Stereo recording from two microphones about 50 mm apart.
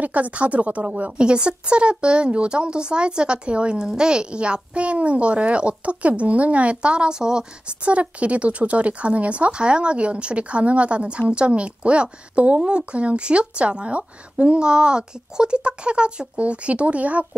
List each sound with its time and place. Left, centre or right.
0.0 s a woman's voice: right